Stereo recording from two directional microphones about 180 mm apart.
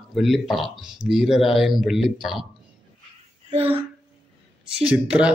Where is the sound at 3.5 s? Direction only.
35° right (ahead or behind).